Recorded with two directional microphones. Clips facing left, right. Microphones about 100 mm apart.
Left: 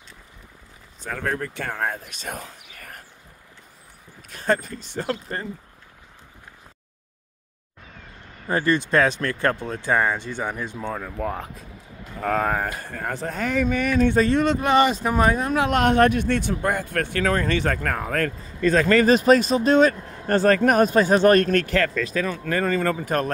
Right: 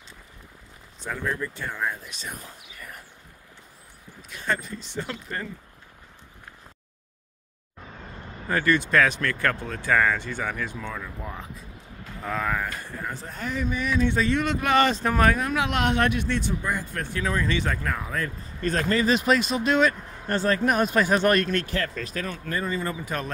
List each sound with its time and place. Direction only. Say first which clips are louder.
1.1 s speech: left 3 dB; 75° left (ahead or behind); by 3.0 s 60° left (ahead or behind)
4.3 s speech: left 6 dB; 40° left (ahead or behind)
8.5 s speech: left 2 dB; 25° left (ahead or behind)
11.1 s speech: left 8 dB; 60° left (ahead or behind)
12.9 s speech: left 6 dB; 65° left (ahead or behind); by 14.9 s 25° left (ahead or behind)
14.9 s speech: left 2 dB; 10° left (ahead or behind)
15.2 s speech: left 3 dB; 30° left (ahead or behind); by 18.3 s 60° left (ahead or behind)
19.0 s speech: left 6 dB; 40° left (ahead or behind)
20.9 s speech: left 5 dB; 30° left (ahead or behind)
21.5 s speech: left 6 dB; 55° left (ahead or behind)
22.5 s speech: left 6 dB; 75° left (ahead or behind); by 23.3 s 50° left (ahead or behind)